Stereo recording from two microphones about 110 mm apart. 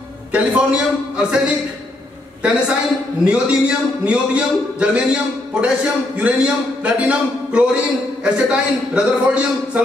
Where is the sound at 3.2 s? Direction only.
10° right (ahead or behind).